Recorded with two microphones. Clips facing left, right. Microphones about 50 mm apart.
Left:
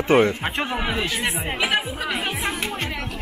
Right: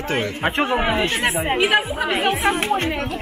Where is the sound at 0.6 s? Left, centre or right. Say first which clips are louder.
Right 6 dB; centre.